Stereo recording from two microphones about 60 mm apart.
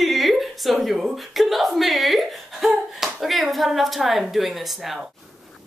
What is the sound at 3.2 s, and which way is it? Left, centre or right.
Speech, centre.